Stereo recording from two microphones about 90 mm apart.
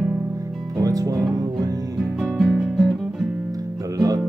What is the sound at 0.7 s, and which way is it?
Speech, 40° right (ahead or behind).